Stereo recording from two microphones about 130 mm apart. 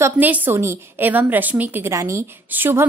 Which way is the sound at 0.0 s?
15° right (ahead or behind).